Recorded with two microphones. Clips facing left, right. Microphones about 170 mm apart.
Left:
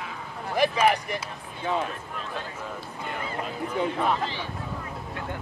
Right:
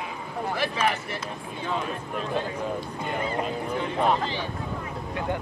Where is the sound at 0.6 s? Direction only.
15° left (ahead or behind).